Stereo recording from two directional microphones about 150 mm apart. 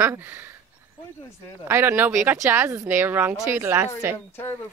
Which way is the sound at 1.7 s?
15° right (ahead or behind).